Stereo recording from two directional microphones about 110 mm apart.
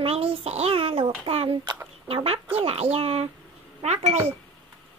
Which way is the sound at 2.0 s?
60° right (ahead or behind).